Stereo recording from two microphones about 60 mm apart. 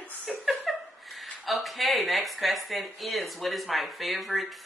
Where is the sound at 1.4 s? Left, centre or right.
Centre.